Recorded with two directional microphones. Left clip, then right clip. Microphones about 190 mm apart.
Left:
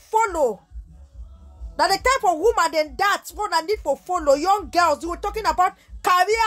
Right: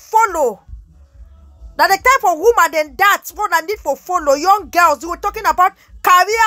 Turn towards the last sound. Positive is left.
turn(degrees=-15)  # may be behind; listen again after turning